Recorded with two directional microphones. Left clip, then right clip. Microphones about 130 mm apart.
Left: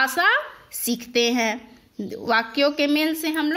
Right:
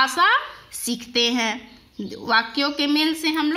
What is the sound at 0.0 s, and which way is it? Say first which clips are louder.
A woman's voice: right 2 dB; 35° left (ahead or behind).